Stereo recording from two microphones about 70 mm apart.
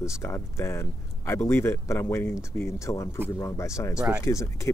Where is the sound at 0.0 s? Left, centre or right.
Left.